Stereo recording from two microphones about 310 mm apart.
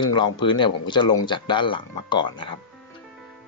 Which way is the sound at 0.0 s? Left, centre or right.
Centre.